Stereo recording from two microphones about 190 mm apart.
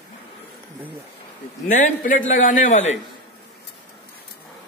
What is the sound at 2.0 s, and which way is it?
Speech, 45° left (ahead or behind).